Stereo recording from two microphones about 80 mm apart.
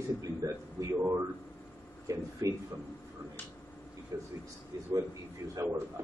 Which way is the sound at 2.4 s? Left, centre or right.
Right.